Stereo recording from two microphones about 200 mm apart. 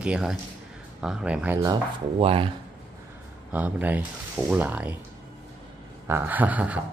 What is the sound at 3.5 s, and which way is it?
Speech, 10° right (ahead or behind).